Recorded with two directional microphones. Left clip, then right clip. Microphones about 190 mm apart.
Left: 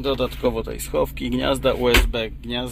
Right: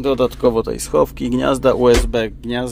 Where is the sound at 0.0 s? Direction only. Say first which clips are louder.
Right 6 dB; 45° right (ahead or behind).